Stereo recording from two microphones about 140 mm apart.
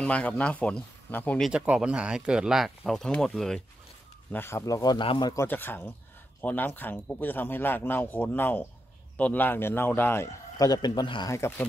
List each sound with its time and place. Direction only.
0.0 s speech: 10° left (ahead or behind)
1.5 s speech: 5° right (ahead or behind)
4.3 s speech: 15° left (ahead or behind)
5.4 s speech: 15° left (ahead or behind); by 11.3 s 30° left (ahead or behind)
11.3 s speech: 20° left (ahead or behind)